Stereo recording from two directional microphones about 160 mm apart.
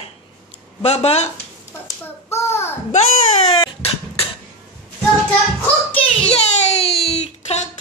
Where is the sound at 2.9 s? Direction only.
45° left (ahead or behind).